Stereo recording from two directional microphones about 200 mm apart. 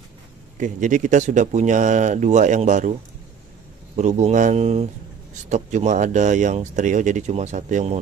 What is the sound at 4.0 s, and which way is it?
Speech, 35° right (ahead or behind).